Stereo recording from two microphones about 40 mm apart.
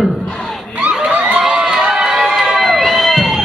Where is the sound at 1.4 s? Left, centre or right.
Centre.